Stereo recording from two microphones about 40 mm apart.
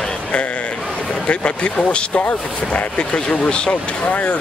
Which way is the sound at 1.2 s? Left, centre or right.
Left.